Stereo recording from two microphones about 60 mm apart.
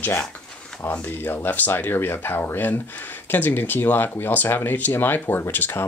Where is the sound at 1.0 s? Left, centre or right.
Left.